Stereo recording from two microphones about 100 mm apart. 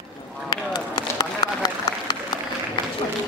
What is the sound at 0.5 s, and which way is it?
Run, 40° left (ahead or behind).